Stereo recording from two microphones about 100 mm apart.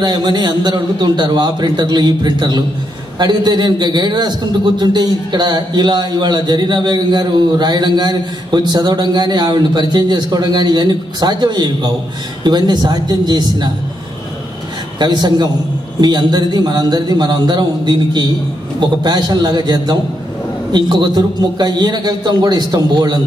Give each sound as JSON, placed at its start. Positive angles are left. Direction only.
{"t": 0.0, "sound": "a man's voice", "side_deg": -45}
{"t": 15.0, "sound": "a man's voice", "side_deg": -45}